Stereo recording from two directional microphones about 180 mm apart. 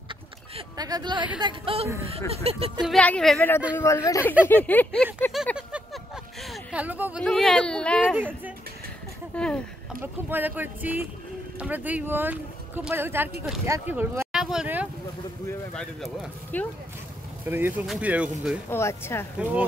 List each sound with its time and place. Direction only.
0.6 s speech: 20° right (ahead or behind)
2.8 s speech: 5° left (ahead or behind)
3.7 s a sound: 15° left (ahead or behind)
6.4 s speech: 5° right (ahead or behind)
9.3 s speech: 5° left (ahead or behind)
10.3 s speech: 10° right (ahead or behind)
15.4 s speech: 5° left (ahead or behind)
17.5 s speech: 10° right (ahead or behind)
18.7 s a sound: 15° left (ahead or behind)
19.3 s speech: 5° right (ahead or behind)